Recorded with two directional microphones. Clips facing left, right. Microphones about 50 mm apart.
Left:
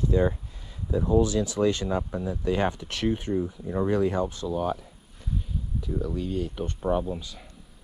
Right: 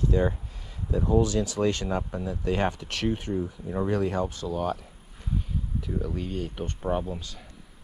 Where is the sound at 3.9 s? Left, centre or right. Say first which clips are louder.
Left 3 dB; right.